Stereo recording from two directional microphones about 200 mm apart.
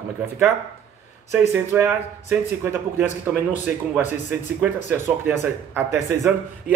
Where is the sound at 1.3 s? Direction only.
15° right (ahead or behind).